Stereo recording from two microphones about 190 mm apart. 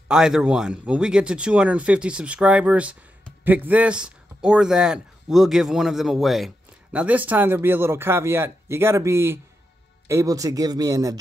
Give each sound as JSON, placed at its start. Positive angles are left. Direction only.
{"t": 0.1, "sound": "speech", "side_deg": -5}